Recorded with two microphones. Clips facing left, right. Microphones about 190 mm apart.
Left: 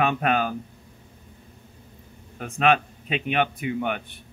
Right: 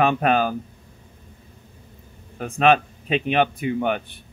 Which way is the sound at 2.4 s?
35° right (ahead or behind).